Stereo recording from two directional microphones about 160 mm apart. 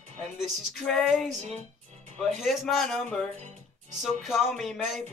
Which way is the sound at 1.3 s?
45° right (ahead or behind).